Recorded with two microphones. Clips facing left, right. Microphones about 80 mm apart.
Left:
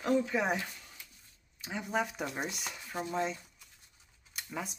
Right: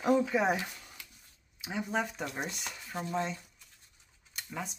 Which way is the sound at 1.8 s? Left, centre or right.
Centre.